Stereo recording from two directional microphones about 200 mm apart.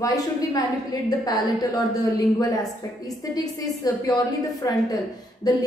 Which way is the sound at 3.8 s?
15° left (ahead or behind).